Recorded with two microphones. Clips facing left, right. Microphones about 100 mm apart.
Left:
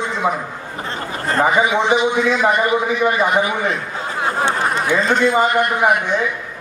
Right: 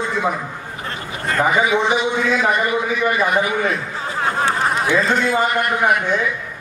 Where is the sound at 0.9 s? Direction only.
35° left (ahead or behind).